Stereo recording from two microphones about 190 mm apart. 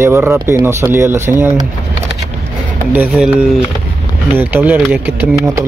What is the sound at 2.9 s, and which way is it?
Speech, 5° right (ahead or behind).